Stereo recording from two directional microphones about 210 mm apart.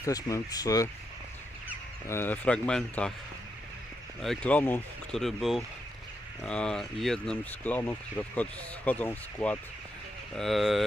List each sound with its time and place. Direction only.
0.0 s speech: 15° left (ahead or behind)
2.0 s speech: 10° left (ahead or behind)
4.2 s speech: 5° left (ahead or behind)